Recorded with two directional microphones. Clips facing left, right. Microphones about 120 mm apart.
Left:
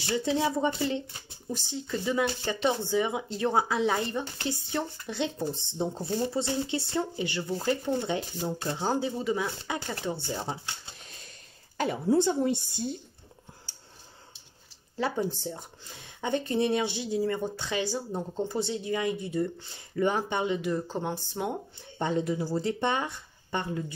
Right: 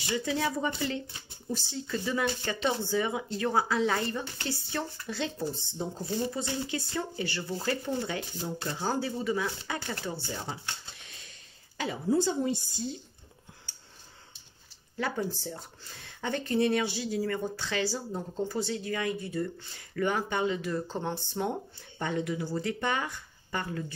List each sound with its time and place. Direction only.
0.1 s speech: 20° left (ahead or behind)
11.7 s a sound: 50° left (ahead or behind)
12.1 s speech: 60° left (ahead or behind)
15.0 s speech: 25° left (ahead or behind)
21.9 s speech: 25° left (ahead or behind)